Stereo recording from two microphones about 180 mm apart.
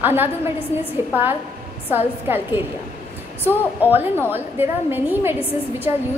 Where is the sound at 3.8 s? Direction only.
10° right (ahead or behind).